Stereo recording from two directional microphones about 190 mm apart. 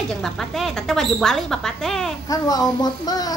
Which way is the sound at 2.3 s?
20° left (ahead or behind).